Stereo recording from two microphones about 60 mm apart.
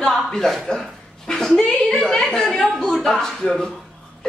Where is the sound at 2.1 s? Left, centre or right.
Centre.